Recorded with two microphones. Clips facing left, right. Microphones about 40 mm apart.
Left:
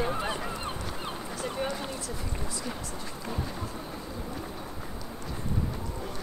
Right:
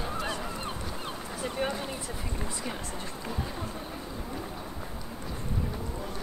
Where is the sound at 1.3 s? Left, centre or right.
Centre.